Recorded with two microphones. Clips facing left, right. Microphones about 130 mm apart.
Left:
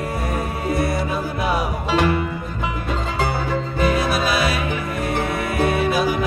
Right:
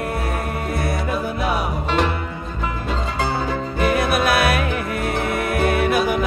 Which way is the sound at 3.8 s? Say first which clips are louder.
Right 2 dB; 60° right (ahead or behind).